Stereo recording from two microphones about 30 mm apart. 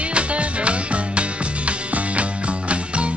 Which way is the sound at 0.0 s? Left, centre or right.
Right.